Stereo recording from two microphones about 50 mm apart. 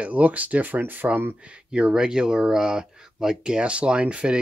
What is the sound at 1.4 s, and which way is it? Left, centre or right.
Speech, right.